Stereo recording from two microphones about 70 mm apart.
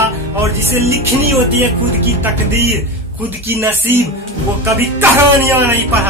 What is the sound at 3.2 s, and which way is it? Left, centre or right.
Music, right.